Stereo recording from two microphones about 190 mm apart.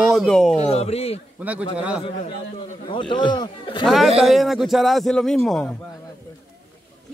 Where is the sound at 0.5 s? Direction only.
35° left (ahead or behind).